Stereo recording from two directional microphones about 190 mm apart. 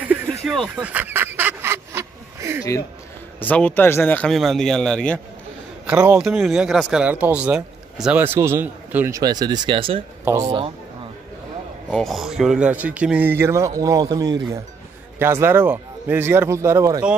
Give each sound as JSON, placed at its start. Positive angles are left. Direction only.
{"t": 0.5, "sound": "duck", "side_deg": 0}
{"t": 3.3, "sound": "speech", "side_deg": 10}
{"t": 5.9, "sound": "a man's voice", "side_deg": -5}
{"t": 10.2, "sound": "a man's voice", "side_deg": -15}
{"t": 11.9, "sound": "a man's voice", "side_deg": 0}